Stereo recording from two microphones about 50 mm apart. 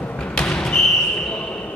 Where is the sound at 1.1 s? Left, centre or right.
Centre.